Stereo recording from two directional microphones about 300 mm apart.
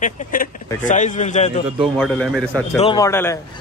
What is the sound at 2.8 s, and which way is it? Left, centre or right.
Speech, centre.